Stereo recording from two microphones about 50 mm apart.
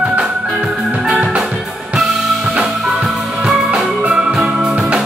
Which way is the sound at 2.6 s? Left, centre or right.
Centre.